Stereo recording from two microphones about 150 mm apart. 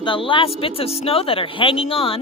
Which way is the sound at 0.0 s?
35° left (ahead or behind).